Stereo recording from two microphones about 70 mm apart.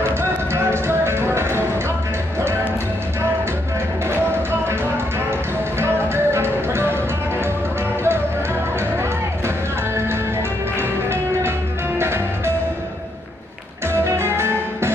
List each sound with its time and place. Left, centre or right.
0.2 s music: right
5.8 s music: right
10.8 s music: right
14.1 s music: right